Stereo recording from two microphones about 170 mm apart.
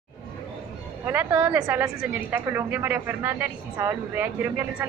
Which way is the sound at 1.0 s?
10° right (ahead or behind).